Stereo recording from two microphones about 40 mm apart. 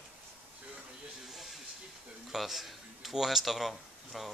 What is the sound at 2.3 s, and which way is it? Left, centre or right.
A man's voice, centre.